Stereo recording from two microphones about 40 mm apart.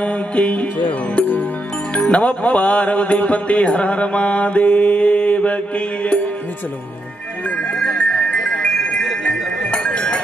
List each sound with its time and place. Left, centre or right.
0.0 s music: left
8.0 s music: left
9.7 s a sound: left